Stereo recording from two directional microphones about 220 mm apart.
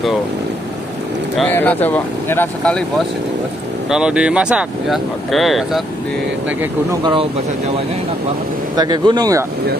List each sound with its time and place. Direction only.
1.3 s speech: 5° left (ahead or behind)
3.9 s speech: 5° right (ahead or behind)
6.6 s speech: 15° right (ahead or behind)
8.7 s speech: 20° right (ahead or behind)